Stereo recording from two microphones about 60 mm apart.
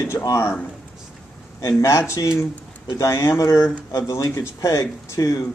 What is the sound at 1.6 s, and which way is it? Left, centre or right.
Speech, left.